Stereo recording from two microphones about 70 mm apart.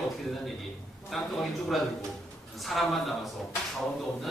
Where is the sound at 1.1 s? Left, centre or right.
Centre.